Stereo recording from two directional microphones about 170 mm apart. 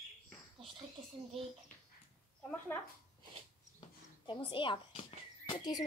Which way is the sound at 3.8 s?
30° left (ahead or behind).